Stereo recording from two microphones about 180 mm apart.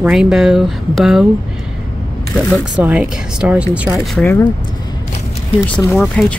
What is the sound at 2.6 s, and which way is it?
Speech, 5° right (ahead or behind).